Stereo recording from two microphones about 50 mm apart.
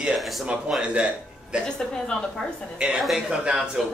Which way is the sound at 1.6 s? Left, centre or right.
Centre.